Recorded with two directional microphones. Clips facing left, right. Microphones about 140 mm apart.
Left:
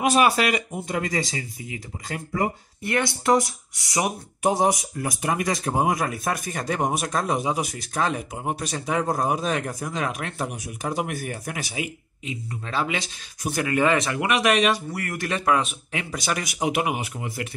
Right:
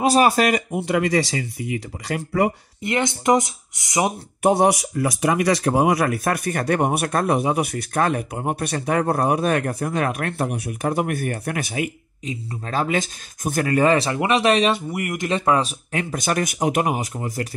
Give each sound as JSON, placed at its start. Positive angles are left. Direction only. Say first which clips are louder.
{"t": 0.0, "sound": "speech", "louder": "right 3 dB", "side_deg": -40}
{"t": 0.7, "sound": "speech", "louder": "right 7 dB", "side_deg": -75}
{"t": 2.8, "sound": "speech", "louder": "right 3 dB", "side_deg": -20}
{"t": 4.4, "sound": "speech", "louder": "right 4 dB", "side_deg": -60}
{"t": 12.3, "sound": "speech", "louder": "right 3 dB", "side_deg": -45}
{"t": 14.9, "sound": "speech", "louder": "right 4 dB", "side_deg": -20}